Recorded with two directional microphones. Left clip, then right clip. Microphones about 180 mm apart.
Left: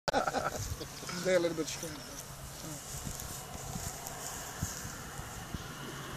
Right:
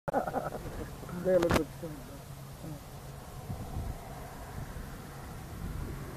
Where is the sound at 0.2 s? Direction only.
5° right (ahead or behind).